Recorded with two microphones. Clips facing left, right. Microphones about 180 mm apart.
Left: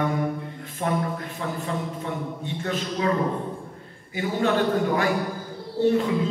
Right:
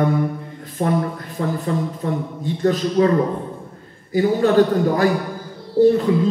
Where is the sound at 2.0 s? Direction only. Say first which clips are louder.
Right 6 dB; 40° right (ahead or behind).